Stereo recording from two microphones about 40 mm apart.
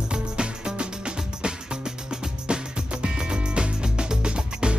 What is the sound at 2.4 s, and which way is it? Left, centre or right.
Music, right.